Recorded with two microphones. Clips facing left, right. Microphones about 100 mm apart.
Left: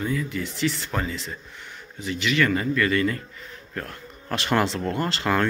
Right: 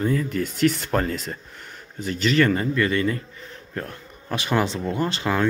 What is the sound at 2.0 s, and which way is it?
Speech, 40° right (ahead or behind).